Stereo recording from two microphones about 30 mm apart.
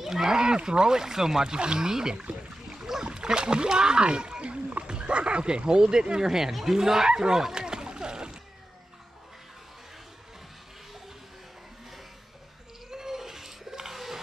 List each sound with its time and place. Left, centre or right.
0.0 s speech: centre
1.5 s speech: right
2.7 s boat: centre
3.2 s speech: right
4.8 s speech: right; by 7.1 s centre
7.1 s dog: right
12.9 s a sound: centre